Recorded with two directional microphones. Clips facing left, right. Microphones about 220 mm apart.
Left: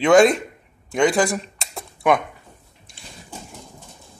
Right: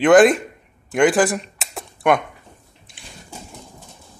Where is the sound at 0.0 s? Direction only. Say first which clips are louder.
Right 2 dB; 5° right (ahead or behind).